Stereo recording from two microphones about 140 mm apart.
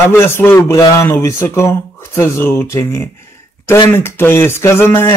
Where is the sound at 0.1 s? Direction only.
15° left (ahead or behind).